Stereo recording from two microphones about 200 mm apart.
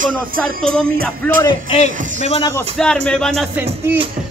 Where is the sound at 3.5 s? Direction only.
10° right (ahead or behind).